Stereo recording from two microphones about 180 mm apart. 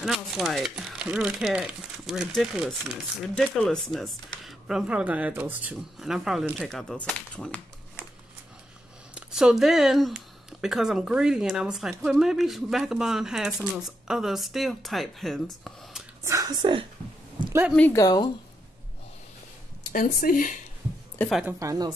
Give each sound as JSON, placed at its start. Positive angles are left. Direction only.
{"t": 0.0, "sound": "speech", "side_deg": 0}
{"t": 9.1, "sound": "speech", "side_deg": -5}
{"t": 16.3, "sound": "a woman's voice", "side_deg": -20}
{"t": 17.5, "sound": "speech", "side_deg": -10}
{"t": 17.7, "sound": "speech", "side_deg": 15}
{"t": 19.9, "sound": "speech", "side_deg": 50}
{"t": 21.3, "sound": "speech", "side_deg": -5}
{"t": 21.5, "sound": "speech", "side_deg": -20}